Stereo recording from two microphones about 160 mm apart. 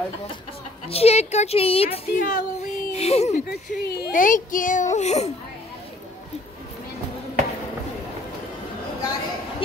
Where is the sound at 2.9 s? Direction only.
40° left (ahead or behind).